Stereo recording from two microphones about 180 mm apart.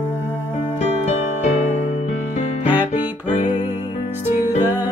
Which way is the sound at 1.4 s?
35° left (ahead or behind).